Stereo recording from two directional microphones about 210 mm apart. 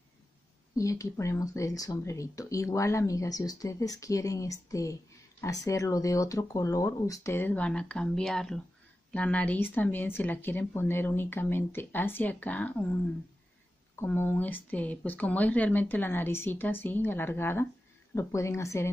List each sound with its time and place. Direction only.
0.7 s speech: 15° left (ahead or behind)